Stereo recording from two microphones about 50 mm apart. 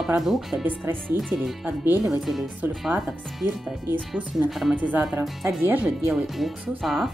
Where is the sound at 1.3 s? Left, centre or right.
Right.